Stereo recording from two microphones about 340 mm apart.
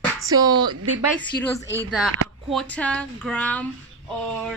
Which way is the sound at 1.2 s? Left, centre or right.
Centre.